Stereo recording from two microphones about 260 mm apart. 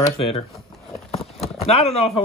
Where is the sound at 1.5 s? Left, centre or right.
Left.